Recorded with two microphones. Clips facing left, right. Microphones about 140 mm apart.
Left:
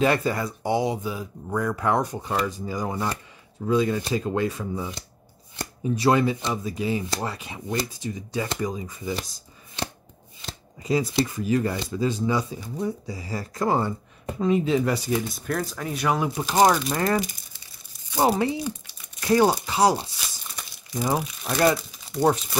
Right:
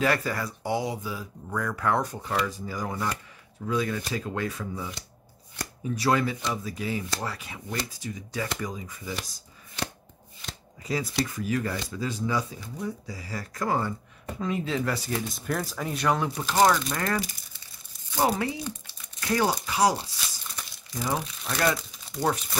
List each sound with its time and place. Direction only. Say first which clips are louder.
0.0 s speech: left 4 dB; 20° left (ahead or behind)
10.4 s speech: left 4 dB; 20° left (ahead or behind)
15.1 s speech: left 3 dB; centre (ahead or behind); by 21.2 s 25° left (ahead or behind)
22.2 s speech: left 6 dB; 25° left (ahead or behind)